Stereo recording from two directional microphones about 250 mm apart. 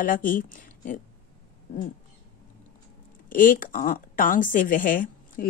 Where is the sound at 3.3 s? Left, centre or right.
Left.